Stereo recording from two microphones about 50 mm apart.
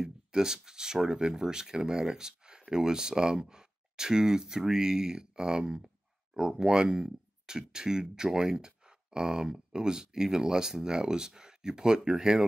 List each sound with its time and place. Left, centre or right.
0.0 s speech: centre